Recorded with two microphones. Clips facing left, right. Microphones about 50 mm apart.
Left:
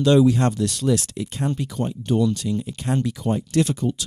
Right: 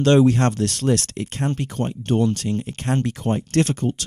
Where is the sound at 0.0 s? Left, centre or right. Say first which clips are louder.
Right 1 dB; right.